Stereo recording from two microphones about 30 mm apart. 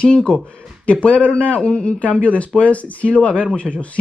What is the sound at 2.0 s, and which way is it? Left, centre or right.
Speech, left.